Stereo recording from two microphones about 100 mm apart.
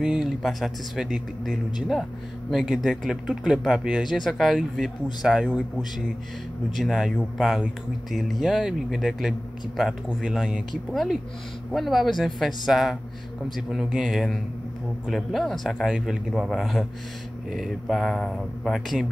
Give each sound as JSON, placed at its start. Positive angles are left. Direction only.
{"t": 0.0, "sound": "speech", "side_deg": -5}
{"t": 6.7, "sound": "speech", "side_deg": 0}